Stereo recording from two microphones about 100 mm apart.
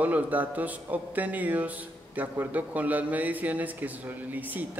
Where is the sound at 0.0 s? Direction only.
15° right (ahead or behind).